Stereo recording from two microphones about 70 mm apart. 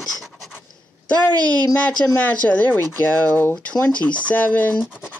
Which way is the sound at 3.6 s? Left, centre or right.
Centre.